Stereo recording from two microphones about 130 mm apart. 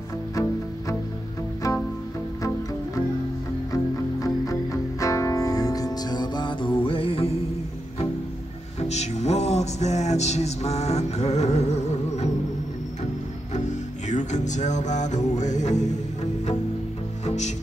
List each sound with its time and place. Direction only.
0.3 s music: 25° left (ahead or behind)
3.7 s music: 25° left (ahead or behind); by 7.3 s 45° left (ahead or behind)
8.7 s music: 60° left (ahead or behind)
13.5 s music: 65° left (ahead or behind)
17.2 s music: 65° left (ahead or behind)